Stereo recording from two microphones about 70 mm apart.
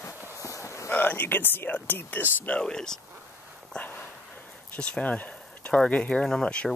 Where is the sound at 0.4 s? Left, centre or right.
Left.